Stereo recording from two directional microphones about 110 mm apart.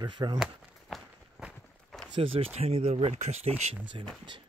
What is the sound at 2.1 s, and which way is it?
Speech, 55° right (ahead or behind).